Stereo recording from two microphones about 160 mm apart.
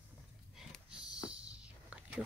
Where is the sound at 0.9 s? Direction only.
5° right (ahead or behind).